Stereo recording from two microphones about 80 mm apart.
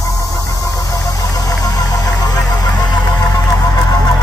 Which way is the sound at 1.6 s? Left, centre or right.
Left.